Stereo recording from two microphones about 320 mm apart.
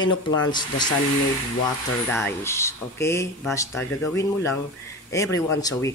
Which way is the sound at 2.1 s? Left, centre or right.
Centre.